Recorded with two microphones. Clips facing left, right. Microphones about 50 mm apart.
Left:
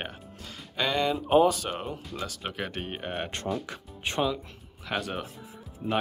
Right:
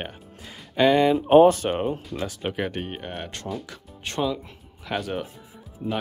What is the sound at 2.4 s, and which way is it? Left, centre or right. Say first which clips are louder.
Speech: right 6 dB; centre.